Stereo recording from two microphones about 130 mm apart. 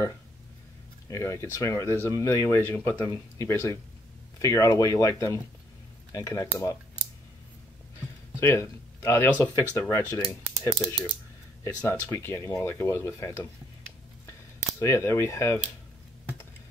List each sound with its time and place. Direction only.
1.0 s speech: 25° left (ahead or behind)
8.4 s speech: 20° left (ahead or behind)
14.8 s speech: 20° left (ahead or behind)